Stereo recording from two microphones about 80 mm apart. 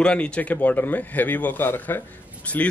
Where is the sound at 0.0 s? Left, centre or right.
Centre.